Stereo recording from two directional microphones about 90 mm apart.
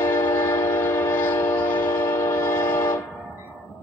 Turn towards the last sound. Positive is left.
turn(degrees=25)  # may be behind; listen again after turning